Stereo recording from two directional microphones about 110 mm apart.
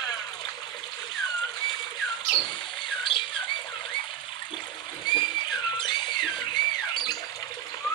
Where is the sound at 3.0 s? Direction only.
50° left (ahead or behind).